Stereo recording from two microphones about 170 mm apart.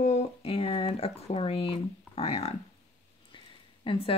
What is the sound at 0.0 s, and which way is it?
Speech, 40° left (ahead or behind).